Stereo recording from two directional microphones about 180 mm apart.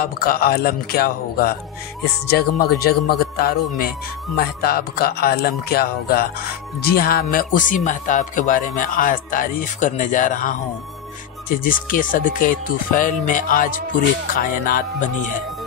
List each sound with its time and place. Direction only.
0.0 s speech: 55° left (ahead or behind)